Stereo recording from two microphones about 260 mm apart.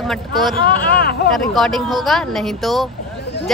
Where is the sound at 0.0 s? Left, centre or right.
Centre.